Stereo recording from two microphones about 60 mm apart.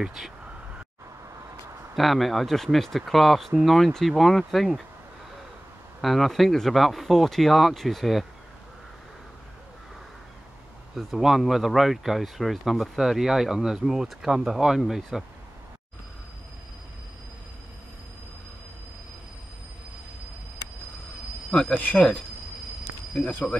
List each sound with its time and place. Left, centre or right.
0.0 s speech: centre
2.0 s speech: centre
5.9 s speech: centre
11.0 s speech: centre
21.7 s speech: left